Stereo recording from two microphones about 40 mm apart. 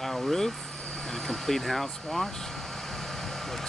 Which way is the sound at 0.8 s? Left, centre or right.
Centre.